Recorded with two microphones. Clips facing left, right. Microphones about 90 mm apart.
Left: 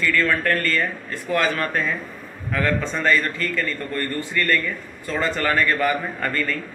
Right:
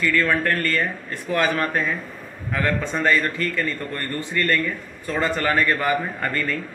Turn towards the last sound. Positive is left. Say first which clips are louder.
# even
turn(degrees=-15)  # may be behind; listen again after turning